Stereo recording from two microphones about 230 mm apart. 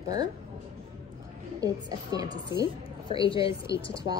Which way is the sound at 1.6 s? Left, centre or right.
Centre.